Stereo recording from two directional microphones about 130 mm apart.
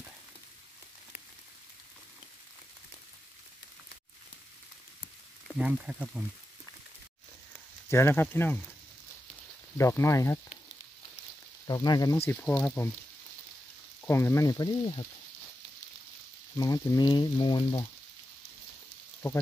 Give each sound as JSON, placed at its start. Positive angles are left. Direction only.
{"t": 5.6, "sound": "speech", "side_deg": -10}
{"t": 7.9, "sound": "speech", "side_deg": 20}
{"t": 9.8, "sound": "speech", "side_deg": 20}
{"t": 11.6, "sound": "speech", "side_deg": 30}
{"t": 12.3, "sound": "speech", "side_deg": 15}
{"t": 14.0, "sound": "speech", "side_deg": 20}
{"t": 16.5, "sound": "speech", "side_deg": 30}